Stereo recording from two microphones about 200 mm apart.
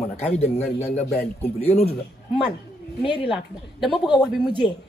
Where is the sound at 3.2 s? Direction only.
Centre (ahead or behind).